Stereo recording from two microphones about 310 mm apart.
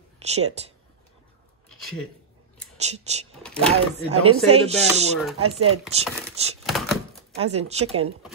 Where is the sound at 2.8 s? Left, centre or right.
Right.